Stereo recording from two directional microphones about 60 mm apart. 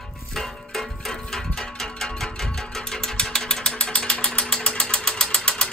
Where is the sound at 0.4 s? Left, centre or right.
Centre.